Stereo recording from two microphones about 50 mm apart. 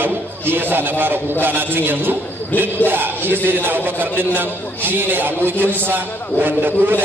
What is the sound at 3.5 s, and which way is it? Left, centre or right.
A man's voice, right.